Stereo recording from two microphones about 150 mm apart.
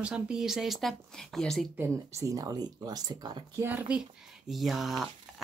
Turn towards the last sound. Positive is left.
turn(degrees=0)  # may be behind; listen again after turning